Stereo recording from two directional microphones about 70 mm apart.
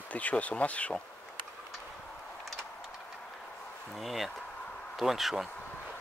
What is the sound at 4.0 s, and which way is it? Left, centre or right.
Speech, centre.